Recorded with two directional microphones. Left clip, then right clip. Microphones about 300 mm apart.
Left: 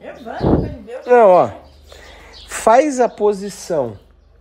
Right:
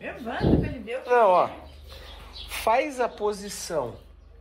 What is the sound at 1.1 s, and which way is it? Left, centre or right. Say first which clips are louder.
Speech: left 10 dB; left.